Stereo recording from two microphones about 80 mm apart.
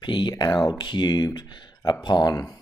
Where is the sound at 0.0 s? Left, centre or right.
Left.